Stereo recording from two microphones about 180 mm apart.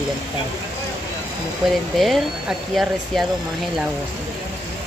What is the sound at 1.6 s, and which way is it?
Speech, centre (ahead or behind).